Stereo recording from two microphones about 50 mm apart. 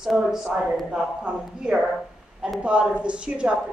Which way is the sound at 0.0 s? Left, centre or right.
Centre.